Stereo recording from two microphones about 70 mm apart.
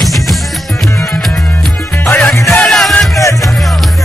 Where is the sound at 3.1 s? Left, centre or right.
Left.